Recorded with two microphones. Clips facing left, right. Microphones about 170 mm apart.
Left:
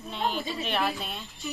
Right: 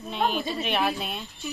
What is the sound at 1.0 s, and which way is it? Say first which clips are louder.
Speech: right 4 dB; 20° right (ahead or behind).